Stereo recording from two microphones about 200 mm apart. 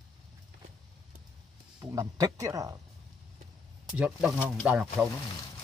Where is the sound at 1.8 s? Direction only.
15° right (ahead or behind).